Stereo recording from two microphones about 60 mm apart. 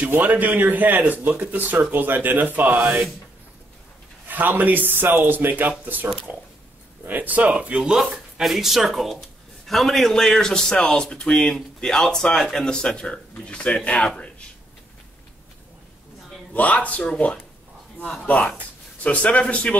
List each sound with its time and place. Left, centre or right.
0.2 s a man's voice: right
4.3 s a man's voice: right
7.1 s a man's voice: right
8.0 s a man's voice: centre
16.5 s a man's voice: left
18.2 s a man's voice: left